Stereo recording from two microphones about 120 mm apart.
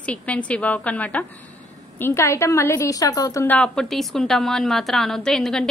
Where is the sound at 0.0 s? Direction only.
10° left (ahead or behind); by 3.4 s 30° left (ahead or behind).